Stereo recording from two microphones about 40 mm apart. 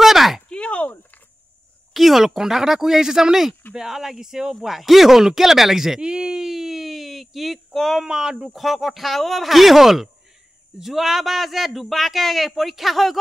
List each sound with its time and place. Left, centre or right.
0.0 s a sound: centre
0.5 s a sound: left
2.0 s speech: centre
4.6 s speech: centre
6.0 s speech: right; by 8.0 s centre
8.0 s speech: centre
8.5 s speech: centre